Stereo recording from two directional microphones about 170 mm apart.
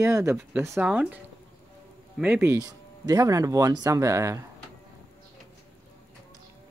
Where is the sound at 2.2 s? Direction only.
10° right (ahead or behind).